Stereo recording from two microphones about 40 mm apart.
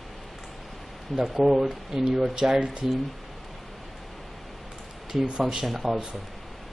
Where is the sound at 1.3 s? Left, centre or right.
Centre.